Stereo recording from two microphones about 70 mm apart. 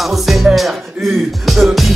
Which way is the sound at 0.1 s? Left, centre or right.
Centre.